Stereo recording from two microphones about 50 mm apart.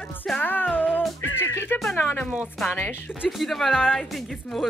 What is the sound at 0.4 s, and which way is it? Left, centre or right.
Music, left.